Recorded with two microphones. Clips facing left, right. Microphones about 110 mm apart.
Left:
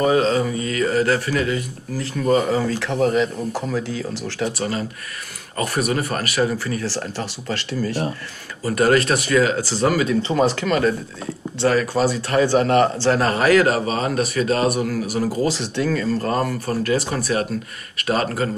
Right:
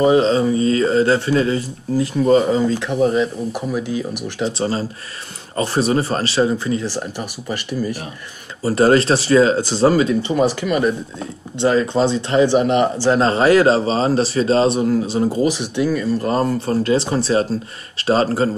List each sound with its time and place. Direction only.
0.0 s speech: 25° right (ahead or behind)
8.6 s speech: 30° right (ahead or behind)
13.2 s speech: 25° right (ahead or behind)